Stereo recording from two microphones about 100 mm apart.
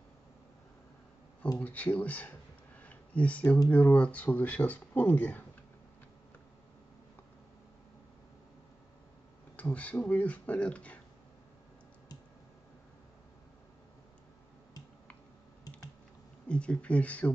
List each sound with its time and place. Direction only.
1.6 s speech: 15° left (ahead or behind)
2.8 s a sound: 15° left (ahead or behind)
3.6 s speech: 15° left (ahead or behind)
9.6 s speech: 15° left (ahead or behind)
16.4 s speech: 10° left (ahead or behind)